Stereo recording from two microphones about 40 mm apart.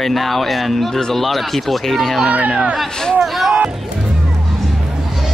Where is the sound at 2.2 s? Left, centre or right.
Right.